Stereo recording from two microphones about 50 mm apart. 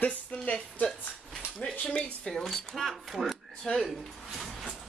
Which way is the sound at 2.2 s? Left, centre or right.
Centre.